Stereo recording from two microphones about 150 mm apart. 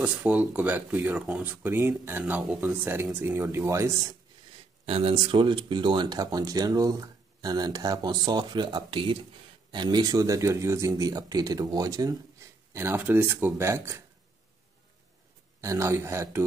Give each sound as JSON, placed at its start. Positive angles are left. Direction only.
{"t": 0.0, "sound": "speech", "side_deg": -10}
{"t": 4.8, "sound": "speech", "side_deg": -40}
{"t": 12.7, "sound": "speech", "side_deg": -15}
{"t": 15.6, "sound": "speech", "side_deg": -20}